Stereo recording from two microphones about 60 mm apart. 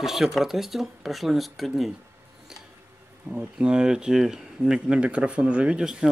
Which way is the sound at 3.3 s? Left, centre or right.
Right.